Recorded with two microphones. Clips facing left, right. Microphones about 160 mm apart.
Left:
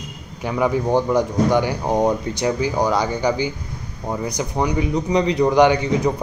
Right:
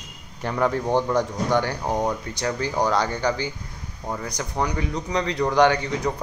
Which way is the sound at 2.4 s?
10° left (ahead or behind).